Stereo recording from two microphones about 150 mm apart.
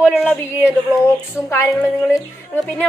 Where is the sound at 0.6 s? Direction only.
20° left (ahead or behind).